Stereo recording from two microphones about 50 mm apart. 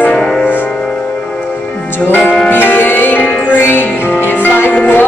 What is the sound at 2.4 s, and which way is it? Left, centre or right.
Music, left.